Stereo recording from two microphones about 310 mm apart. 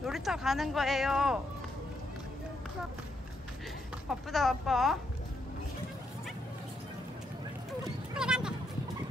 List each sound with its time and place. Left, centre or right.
0.0 s speech: centre
4.1 s speech: centre
8.1 s a sound: centre